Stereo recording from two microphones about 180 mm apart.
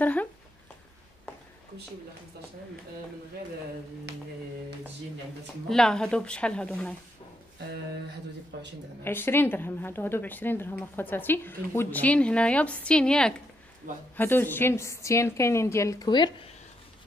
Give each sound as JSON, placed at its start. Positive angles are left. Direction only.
{"t": 0.0, "sound": "speech", "side_deg": 10}
{"t": 4.1, "sound": "a sound", "side_deg": -65}
{"t": 5.7, "sound": "speech", "side_deg": 5}
{"t": 8.5, "sound": "speech", "side_deg": -75}
{"t": 9.0, "sound": "a woman's voice", "side_deg": 10}